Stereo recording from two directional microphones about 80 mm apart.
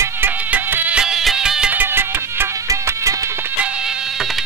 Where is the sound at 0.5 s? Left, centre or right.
Centre.